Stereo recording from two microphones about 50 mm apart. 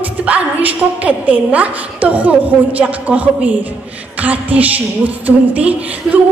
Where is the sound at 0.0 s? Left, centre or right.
Right.